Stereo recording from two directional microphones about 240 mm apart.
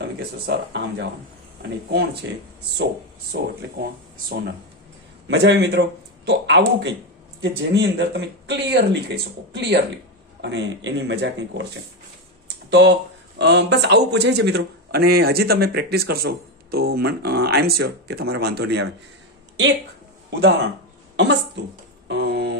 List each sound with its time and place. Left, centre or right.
0.0 s speech: right
3.3 s speech: right
12.6 s speech: right
20.2 s speech: right
21.2 s a sound: right